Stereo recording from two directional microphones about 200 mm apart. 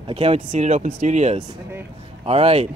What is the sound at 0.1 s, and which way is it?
Speech, 30° right (ahead or behind).